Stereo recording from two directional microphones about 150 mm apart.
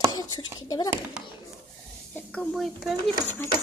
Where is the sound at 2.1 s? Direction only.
10° left (ahead or behind).